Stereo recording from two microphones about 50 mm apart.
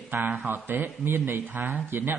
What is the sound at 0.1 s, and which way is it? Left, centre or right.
A man's voice, right.